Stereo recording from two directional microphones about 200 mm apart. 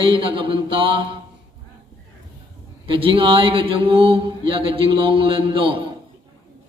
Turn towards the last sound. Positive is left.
turn(degrees=-25)  # may be behind; listen again after turning